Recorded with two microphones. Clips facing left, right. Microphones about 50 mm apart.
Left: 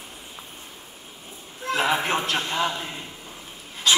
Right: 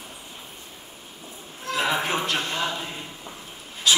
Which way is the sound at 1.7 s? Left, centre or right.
Centre.